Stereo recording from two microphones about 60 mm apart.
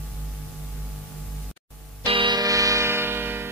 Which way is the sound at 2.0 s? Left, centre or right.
Right.